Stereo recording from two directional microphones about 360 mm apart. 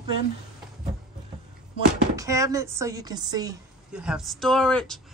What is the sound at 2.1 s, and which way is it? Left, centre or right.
A woman's voice, centre.